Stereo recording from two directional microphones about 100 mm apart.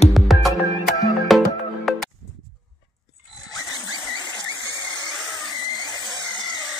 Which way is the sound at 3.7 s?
40° left (ahead or behind).